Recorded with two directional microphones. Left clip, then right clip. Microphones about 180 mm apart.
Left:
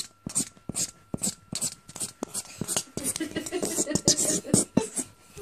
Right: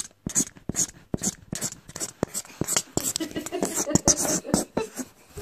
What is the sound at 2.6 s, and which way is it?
Whispering, 30° right (ahead or behind).